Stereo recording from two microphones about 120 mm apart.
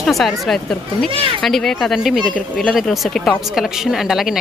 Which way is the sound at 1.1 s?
50° right (ahead or behind).